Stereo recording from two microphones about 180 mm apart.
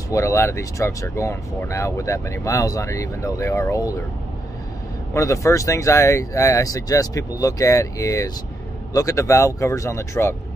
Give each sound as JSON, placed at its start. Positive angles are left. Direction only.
{"t": 0.1, "sound": "speech", "side_deg": 15}
{"t": 5.1, "sound": "speech", "side_deg": 15}